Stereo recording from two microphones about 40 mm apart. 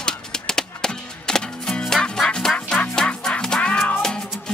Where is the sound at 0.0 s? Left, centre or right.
Centre.